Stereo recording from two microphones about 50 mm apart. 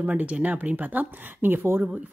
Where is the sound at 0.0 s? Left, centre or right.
Right.